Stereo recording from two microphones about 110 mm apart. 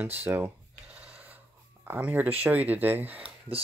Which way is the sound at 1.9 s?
15° right (ahead or behind).